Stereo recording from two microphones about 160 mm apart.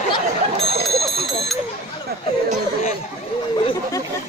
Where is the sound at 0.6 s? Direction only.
40° right (ahead or behind).